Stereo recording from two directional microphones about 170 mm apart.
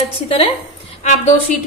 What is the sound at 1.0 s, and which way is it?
Speech, 45° left (ahead or behind).